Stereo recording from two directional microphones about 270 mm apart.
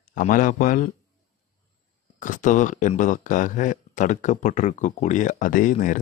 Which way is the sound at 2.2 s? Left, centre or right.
Left.